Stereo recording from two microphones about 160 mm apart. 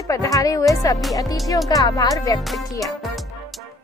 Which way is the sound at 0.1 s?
20° left (ahead or behind).